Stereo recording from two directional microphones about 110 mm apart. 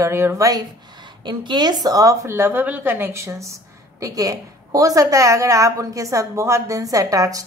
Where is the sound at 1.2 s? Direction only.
45° right (ahead or behind).